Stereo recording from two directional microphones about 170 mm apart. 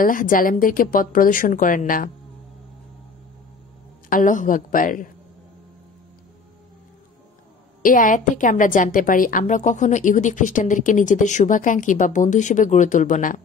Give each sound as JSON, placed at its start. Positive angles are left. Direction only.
{"t": 0.0, "sound": "a woman's voice", "side_deg": 55}
{"t": 4.1, "sound": "a woman's voice", "side_deg": 50}
{"t": 7.8, "sound": "a woman's voice", "side_deg": 50}